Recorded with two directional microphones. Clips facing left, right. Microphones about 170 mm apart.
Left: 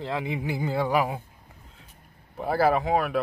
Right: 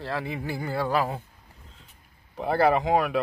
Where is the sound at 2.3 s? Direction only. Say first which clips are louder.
Right 1 dB; centre (ahead or behind).